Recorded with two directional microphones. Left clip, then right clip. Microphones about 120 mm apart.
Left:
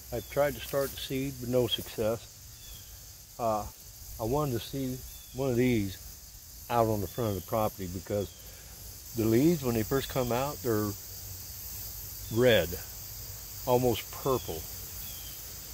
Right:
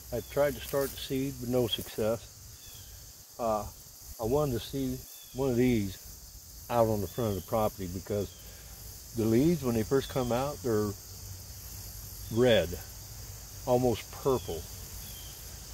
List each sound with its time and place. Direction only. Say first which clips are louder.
0.1 s speech: even; 30° left (ahead or behind)
3.3 s speech: even; 25° left (ahead or behind)
12.4 s speech: left 1 dB; 30° left (ahead or behind)
13.7 s speech: left 1 dB; 30° left (ahead or behind)